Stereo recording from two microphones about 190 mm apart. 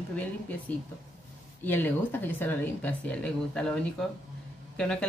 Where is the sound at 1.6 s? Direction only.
10° left (ahead or behind).